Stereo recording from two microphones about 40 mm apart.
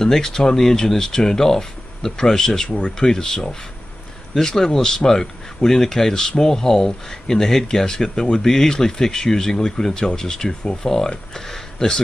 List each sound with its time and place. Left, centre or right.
0.0 s speech: centre